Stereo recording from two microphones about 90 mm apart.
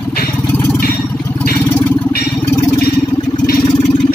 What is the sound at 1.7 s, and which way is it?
Vehicle, 25° left (ahead or behind).